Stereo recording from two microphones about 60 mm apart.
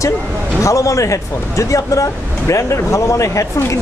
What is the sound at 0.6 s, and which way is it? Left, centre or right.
Speech, left.